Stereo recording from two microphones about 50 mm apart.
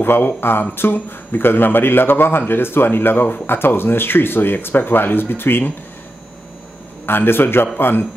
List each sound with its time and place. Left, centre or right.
0.0 s a man's voice: left
7.1 s a man's voice: left